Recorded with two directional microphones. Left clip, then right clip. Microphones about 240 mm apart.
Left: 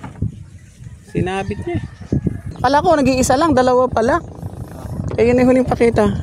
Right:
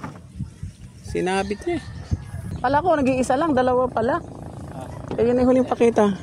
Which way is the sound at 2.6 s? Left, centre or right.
Left.